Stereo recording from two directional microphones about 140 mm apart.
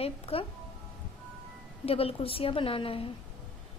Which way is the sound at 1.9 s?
45° left (ahead or behind).